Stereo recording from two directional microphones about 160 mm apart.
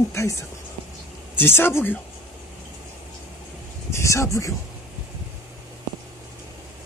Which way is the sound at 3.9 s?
20° left (ahead or behind).